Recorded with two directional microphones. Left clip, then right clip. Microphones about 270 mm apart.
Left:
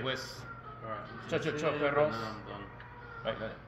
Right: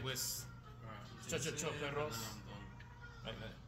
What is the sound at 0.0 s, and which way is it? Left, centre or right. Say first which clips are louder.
Speech: left 7 dB; right.